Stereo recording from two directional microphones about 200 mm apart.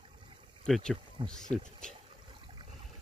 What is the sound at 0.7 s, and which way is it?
Speech, 5° left (ahead or behind).